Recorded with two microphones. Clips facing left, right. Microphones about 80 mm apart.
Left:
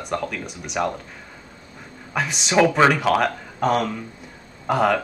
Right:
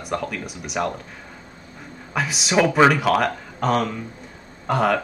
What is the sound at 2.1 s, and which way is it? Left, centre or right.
Speech, centre.